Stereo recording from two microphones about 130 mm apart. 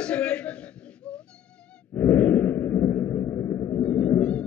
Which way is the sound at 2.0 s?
15° left (ahead or behind).